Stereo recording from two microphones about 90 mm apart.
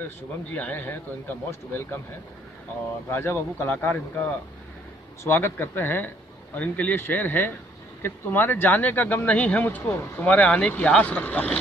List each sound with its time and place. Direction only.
0.0 s a man's voice: 20° left (ahead or behind)
3.1 s a man's voice: 25° left (ahead or behind)
5.2 s a man's voice: 30° left (ahead or behind)